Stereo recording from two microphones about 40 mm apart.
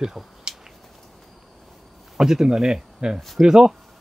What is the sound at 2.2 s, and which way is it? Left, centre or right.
Speech, centre.